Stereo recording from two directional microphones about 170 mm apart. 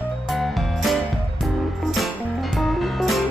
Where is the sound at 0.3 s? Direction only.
Centre (ahead or behind).